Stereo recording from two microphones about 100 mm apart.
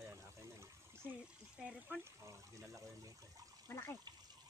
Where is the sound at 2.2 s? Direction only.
30° right (ahead or behind).